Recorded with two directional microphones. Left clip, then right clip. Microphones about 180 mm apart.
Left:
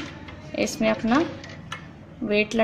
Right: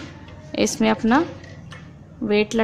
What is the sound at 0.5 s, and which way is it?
Speech, 45° right (ahead or behind).